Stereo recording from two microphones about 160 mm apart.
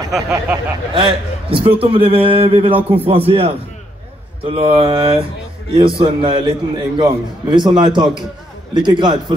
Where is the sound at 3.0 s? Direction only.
35° right (ahead or behind).